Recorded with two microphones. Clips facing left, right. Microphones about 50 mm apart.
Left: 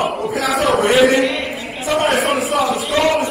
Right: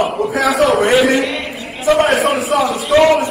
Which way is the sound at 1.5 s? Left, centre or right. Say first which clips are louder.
Left 1 dB; left.